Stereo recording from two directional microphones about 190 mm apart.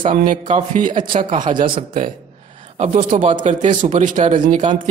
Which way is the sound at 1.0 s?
25° right (ahead or behind).